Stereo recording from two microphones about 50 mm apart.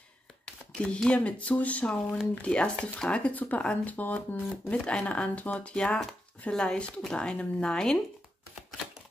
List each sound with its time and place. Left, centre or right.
0.7 s speech: centre
2.4 s speech: left
3.3 s speech: left
4.6 s speech: left